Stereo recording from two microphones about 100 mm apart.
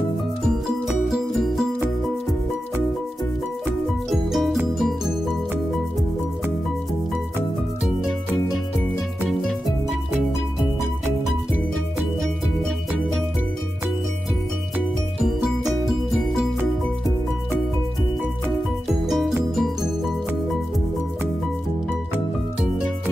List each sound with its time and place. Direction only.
0.8 s music: centre (ahead or behind)
4.1 s music: centre (ahead or behind)
19.0 s music: centre (ahead or behind)